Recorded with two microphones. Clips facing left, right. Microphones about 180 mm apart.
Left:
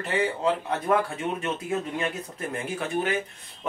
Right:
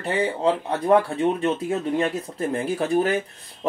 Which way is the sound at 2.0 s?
35° right (ahead or behind).